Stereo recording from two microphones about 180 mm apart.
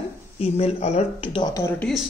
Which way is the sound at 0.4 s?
35° left (ahead or behind).